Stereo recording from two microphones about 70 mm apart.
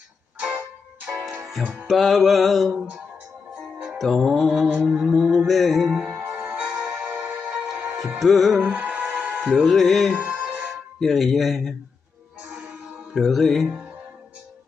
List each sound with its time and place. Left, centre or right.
1.1 s music: right
1.9 s music: centre
3.7 s music: centre
4.0 s music: centre
6.0 s music: right
7.4 s music: centre
8.2 s music: centre
8.6 s music: centre
9.4 s music: centre
10.1 s music: right
11.0 s music: centre
13.1 s music: centre
13.7 s speech: right